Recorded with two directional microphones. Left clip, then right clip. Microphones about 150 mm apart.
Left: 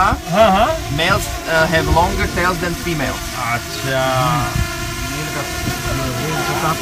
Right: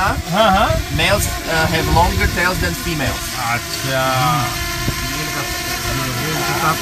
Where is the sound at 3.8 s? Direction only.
15° right (ahead or behind).